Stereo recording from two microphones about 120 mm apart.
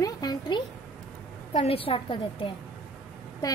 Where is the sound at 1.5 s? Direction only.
55° left (ahead or behind).